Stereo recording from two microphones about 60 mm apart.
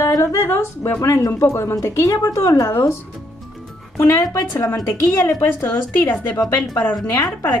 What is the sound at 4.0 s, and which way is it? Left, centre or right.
A woman's voice, left.